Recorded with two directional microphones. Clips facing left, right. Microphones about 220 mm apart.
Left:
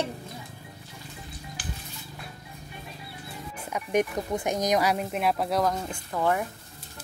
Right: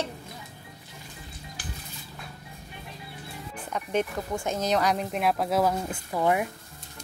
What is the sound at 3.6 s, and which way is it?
A woman's voice, 10° left (ahead or behind).